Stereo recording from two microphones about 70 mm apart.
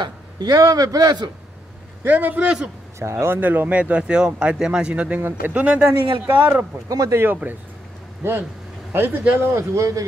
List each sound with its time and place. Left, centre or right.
0.0 s a sound: right
0.6 s a man's voice: right
2.0 s speech: right
3.0 s a man's voice: right
3.3 s speech: right
5.9 s a man's voice: right
6.3 s speech: right
6.9 s a man's voice: right
8.2 s a man's voice: right
9.6 s a man's voice: right